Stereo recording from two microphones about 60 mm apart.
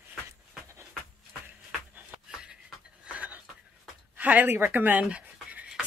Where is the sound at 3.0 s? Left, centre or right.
Right.